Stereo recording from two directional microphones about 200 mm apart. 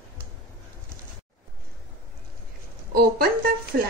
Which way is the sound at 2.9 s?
50° right (ahead or behind).